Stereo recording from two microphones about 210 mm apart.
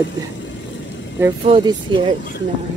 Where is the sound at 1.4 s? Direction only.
25° right (ahead or behind).